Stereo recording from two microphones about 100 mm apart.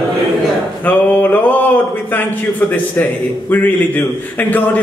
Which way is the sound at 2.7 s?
15° left (ahead or behind).